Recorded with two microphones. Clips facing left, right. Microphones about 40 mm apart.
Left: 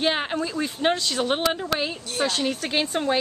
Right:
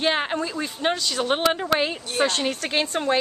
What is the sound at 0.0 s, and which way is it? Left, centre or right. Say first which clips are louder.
Speech: right 1 dB; centre.